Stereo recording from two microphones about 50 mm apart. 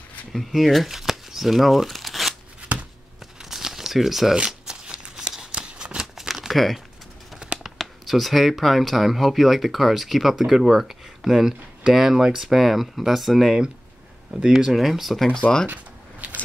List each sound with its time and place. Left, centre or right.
0.3 s speech: centre
3.4 s shuffling cards: centre
7.5 s speech: centre
15.7 s a sound: right